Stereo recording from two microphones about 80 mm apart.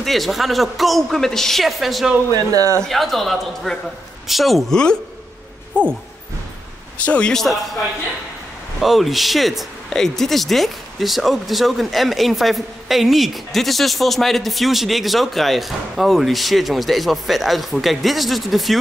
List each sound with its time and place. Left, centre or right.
0.0 s speech: centre
2.5 s speech: right
2.8 s speech: centre
7.1 s a man's voice: centre
8.8 s speech: centre